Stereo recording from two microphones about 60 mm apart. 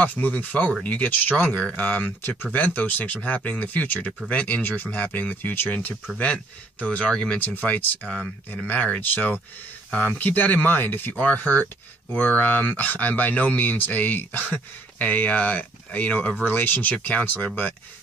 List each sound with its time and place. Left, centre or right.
0.0 s speech: left
7.1 s speech: centre
7.3 s speech: left